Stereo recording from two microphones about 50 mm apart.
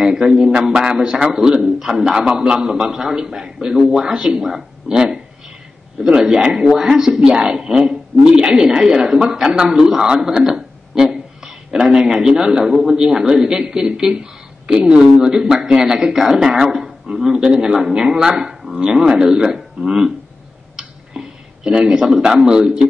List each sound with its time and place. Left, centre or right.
0.0 s a woman's voice: centre
20.7 s tick-tock: centre
22.0 s a man's voice: centre
22.4 s a woman's voice: centre